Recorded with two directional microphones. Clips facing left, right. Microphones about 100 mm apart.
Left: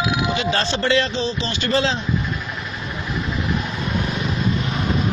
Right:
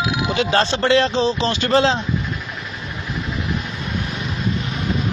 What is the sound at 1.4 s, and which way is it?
Speech, 50° right (ahead or behind).